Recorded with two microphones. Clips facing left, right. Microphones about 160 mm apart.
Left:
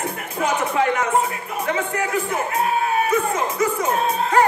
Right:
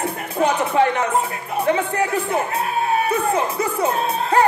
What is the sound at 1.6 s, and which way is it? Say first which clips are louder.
Speech: right 4 dB; 35° right (ahead or behind).